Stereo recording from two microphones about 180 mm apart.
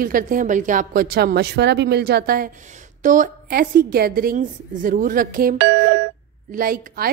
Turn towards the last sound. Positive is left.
turn(degrees=-55)  # may be behind; listen again after turning